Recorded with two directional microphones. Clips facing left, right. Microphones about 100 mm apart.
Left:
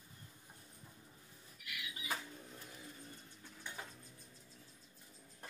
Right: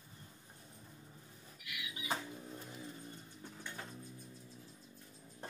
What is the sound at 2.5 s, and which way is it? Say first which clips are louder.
Vehicle: right 5 dB; 20° right (ahead or behind).